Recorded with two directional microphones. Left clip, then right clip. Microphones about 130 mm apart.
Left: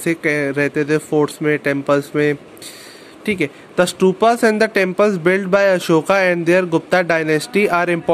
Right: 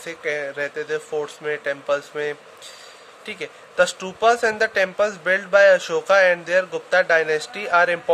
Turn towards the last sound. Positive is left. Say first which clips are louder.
# left 3 dB
turn(degrees=45)  # may be behind; listen again after turning